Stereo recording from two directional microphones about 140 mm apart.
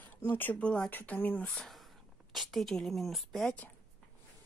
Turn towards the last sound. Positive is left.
turn(degrees=10)  # may be behind; listen again after turning